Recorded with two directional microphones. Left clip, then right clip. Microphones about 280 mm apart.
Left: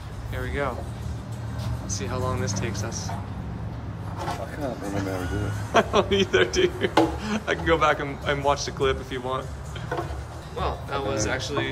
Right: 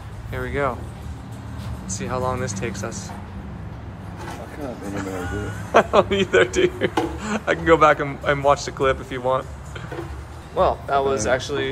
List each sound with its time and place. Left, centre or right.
0.3 s a man's voice: centre
2.0 s a man's voice: centre
4.9 s a man's voice: centre
10.5 s speech: centre